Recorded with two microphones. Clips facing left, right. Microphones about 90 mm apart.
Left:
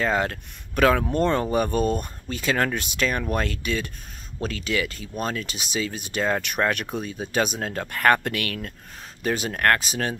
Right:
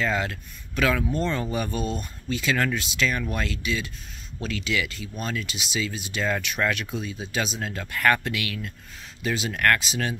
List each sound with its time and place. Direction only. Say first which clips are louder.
0.0 s speech: left 3 dB; 40° left (ahead or behind)